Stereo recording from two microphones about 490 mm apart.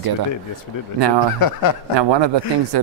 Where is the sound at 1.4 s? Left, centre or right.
Left.